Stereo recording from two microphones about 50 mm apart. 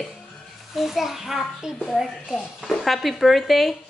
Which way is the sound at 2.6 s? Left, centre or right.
Centre.